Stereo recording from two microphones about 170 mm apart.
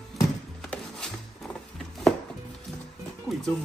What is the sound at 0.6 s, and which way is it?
Wood, 5° left (ahead or behind).